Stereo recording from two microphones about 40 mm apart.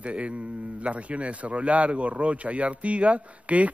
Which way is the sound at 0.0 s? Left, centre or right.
Right.